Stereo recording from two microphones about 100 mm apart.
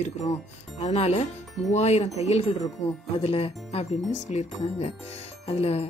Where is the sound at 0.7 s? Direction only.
90° left.